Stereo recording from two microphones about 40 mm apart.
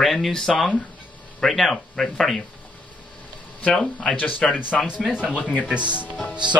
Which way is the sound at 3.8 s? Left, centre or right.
Left.